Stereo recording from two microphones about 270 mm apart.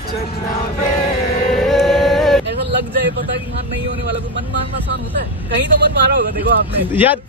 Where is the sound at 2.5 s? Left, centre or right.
Right.